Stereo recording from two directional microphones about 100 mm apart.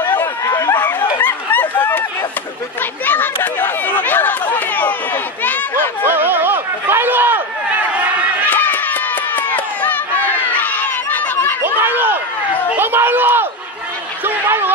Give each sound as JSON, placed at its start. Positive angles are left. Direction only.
{"t": 0.5, "sound": "chatter", "side_deg": 35}
{"t": 0.7, "sound": "chatter", "side_deg": 15}
{"t": 1.2, "sound": "a sound", "side_deg": 15}
{"t": 3.1, "sound": "chatter", "side_deg": 20}
{"t": 6.0, "sound": "a sound", "side_deg": -20}
{"t": 8.5, "sound": "run", "side_deg": 20}
{"t": 10.6, "sound": "crowd", "side_deg": 15}
{"t": 11.6, "sound": "run", "side_deg": -20}
{"t": 12.7, "sound": "a sound", "side_deg": -20}